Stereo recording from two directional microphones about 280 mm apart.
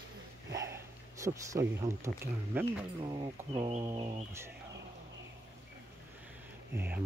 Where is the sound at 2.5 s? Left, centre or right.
Centre.